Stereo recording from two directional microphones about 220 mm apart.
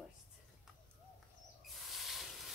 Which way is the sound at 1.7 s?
Centre (ahead or behind).